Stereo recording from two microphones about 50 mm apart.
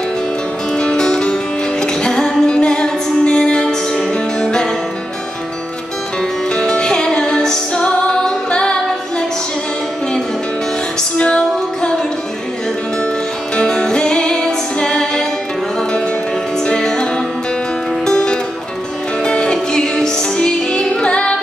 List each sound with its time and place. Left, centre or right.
0.7 s music: centre
6.5 s music: centre
11.1 s music: centre
13.6 s music: centre
16.6 s music: centre